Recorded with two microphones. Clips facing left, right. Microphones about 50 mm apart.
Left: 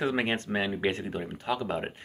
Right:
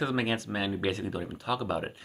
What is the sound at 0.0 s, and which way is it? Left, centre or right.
Speech, left.